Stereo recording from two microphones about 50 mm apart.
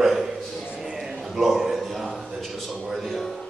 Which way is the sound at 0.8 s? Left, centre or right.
Centre.